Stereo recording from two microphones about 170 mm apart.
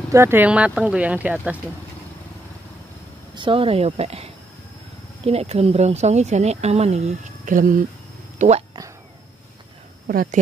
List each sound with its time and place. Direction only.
0.1 s speech: 15° right (ahead or behind)
3.3 s speech: 30° right (ahead or behind); by 7.8 s 50° right (ahead or behind)
8.4 s speech: 40° right (ahead or behind)
10.0 s speech: 60° right (ahead or behind)